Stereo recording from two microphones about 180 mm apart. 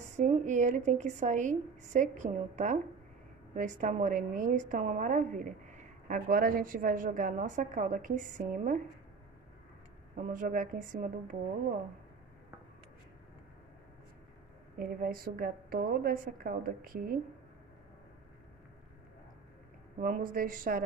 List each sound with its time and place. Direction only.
0.0 s a woman's voice: 40° right (ahead or behind)
10.1 s a woman's voice: 45° right (ahead or behind)
14.8 s a woman's voice: 55° right (ahead or behind)
20.0 s a woman's voice: 50° right (ahead or behind)